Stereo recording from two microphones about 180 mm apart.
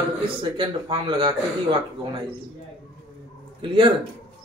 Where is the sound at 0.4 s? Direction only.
25° right (ahead or behind).